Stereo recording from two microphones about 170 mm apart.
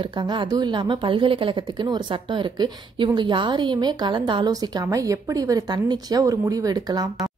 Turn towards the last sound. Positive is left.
turn(degrees=-25)  # may be behind; listen again after turning